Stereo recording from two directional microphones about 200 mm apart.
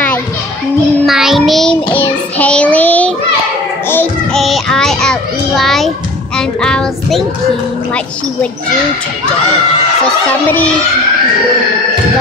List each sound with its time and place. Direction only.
1.0 s child singing: centre (ahead or behind)
1.9 s child singing: 25° left (ahead or behind)
2.3 s child singing: 5° left (ahead or behind)
5.6 s a child's voice: centre (ahead or behind)